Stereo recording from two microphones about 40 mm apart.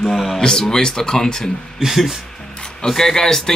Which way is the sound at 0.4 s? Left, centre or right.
Centre.